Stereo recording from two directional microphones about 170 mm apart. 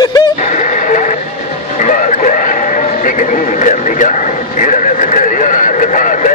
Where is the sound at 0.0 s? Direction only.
25° left (ahead or behind).